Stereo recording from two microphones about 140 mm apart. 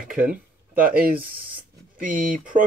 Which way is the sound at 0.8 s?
90° right.